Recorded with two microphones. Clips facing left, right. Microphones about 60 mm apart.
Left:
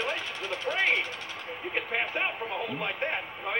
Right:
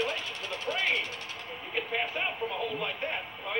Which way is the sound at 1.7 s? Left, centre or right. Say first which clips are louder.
Left 1 dB; left.